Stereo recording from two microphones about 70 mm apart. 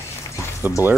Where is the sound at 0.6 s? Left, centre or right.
Right.